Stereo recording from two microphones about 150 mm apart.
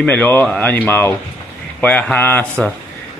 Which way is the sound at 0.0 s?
10° left (ahead or behind).